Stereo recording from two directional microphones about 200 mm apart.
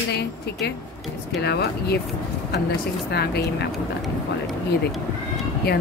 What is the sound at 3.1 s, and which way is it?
Speech, 55° left (ahead or behind).